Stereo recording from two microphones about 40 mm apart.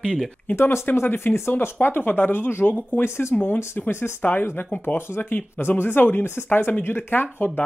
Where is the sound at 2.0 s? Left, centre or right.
Left.